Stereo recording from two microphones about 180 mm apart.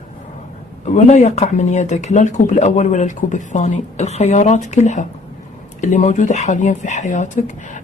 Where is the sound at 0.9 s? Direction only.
40° left (ahead or behind).